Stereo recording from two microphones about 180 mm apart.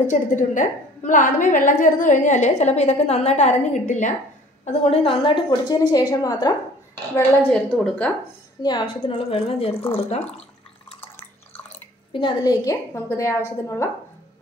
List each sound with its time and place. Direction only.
0.0 s a woman's voice: 45° left (ahead or behind); by 6.5 s 20° left (ahead or behind)
7.7 s speech: 5° left (ahead or behind)
8.6 s a woman's voice: 25° left (ahead or behind)
12.1 s a woman's voice: 25° left (ahead or behind)